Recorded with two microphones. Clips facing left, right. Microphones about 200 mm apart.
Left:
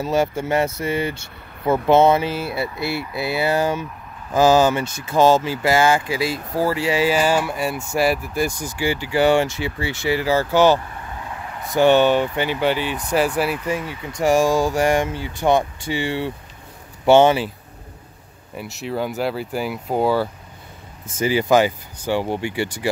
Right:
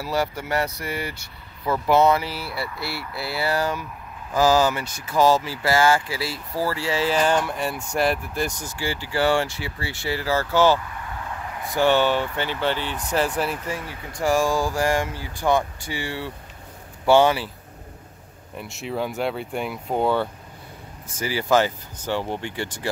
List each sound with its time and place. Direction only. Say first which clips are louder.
0.0 s speech: left 5 dB; 20° left (ahead or behind)
14.2 s speech: left 4 dB; 20° left (ahead or behind)
18.6 s speech: left 3 dB; centre (ahead or behind)
21.2 s speech: left 4 dB; 20° left (ahead or behind)